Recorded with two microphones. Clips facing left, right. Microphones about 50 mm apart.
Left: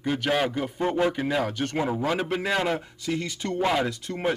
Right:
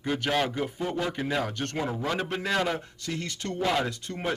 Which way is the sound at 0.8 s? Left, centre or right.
Left.